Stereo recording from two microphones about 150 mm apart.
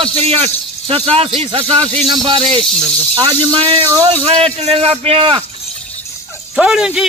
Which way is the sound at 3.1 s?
30° right (ahead or behind).